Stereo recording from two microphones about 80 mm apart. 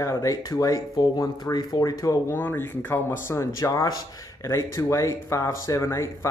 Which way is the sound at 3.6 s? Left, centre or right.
Left.